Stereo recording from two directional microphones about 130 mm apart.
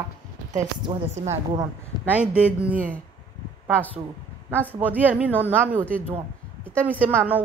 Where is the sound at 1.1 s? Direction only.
60° right (ahead or behind).